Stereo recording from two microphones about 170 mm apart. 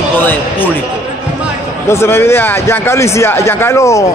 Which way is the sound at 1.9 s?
15° left (ahead or behind).